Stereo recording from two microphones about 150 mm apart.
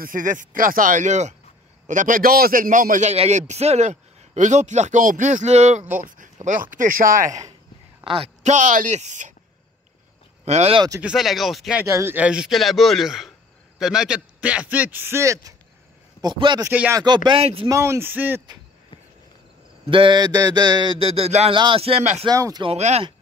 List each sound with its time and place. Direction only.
0.0 s a man's voice: 60° right (ahead or behind)
5.9 s speech: 60° right (ahead or behind)
8.0 s a woman's voice: 40° right (ahead or behind)
8.5 s speech: 55° right (ahead or behind)
10.4 s a man's voice: 45° right (ahead or behind)
11.0 s speech: 5° right (ahead or behind)
11.9 s a man's voice: 15° right (ahead or behind)
16.6 s a man's voice: 10° right (ahead or behind)
16.9 s a man's voice: 30° right (ahead or behind)
17.4 s speech: 40° right (ahead or behind)
17.6 s a man's voice: 20° right (ahead or behind)
19.9 s speech: 35° right (ahead or behind)
22.2 s a man's voice: 25° right (ahead or behind)
22.7 s a man's voice: 45° right (ahead or behind)